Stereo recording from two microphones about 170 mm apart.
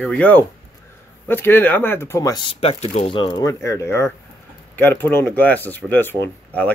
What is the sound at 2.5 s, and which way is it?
Speech, 35° left (ahead or behind).